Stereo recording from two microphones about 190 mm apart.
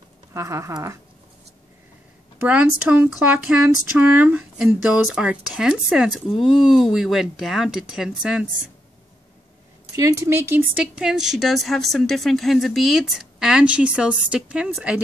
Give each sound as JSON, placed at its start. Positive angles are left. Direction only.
{"t": 0.3, "sound": "speech", "side_deg": -15}
{"t": 2.4, "sound": "a woman's voice", "side_deg": -5}
{"t": 9.9, "sound": "a woman's voice", "side_deg": -15}